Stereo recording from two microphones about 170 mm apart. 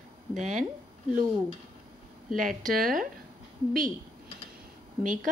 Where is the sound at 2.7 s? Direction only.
55° right (ahead or behind).